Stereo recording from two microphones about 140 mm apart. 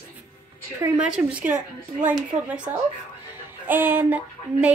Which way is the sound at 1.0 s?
10° right (ahead or behind).